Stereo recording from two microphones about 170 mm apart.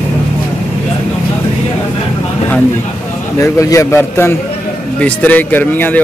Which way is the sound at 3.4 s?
20° left (ahead or behind).